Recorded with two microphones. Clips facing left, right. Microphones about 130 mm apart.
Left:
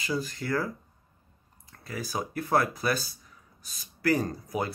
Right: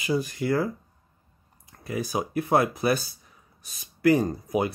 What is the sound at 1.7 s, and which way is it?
Speech, 20° right (ahead or behind).